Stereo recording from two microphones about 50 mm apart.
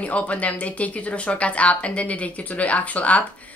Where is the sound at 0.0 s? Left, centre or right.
Left.